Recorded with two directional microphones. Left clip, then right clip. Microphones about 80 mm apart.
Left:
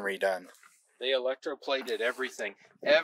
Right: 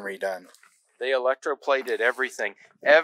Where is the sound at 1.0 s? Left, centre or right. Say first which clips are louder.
Right 6 dB; right.